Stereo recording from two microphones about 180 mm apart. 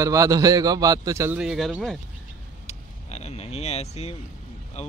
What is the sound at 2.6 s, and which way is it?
Vehicle, 35° left (ahead or behind).